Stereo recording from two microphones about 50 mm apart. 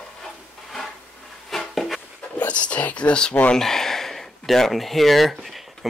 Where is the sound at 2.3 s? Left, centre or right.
Left.